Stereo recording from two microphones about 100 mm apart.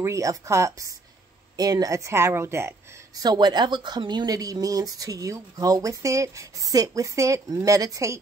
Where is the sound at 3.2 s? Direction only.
45° right (ahead or behind).